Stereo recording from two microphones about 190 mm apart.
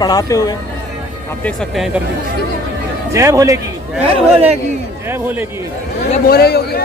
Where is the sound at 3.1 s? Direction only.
15° right (ahead or behind).